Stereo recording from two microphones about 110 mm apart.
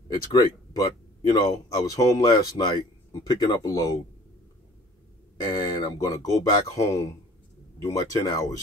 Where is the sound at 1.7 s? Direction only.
35° left (ahead or behind).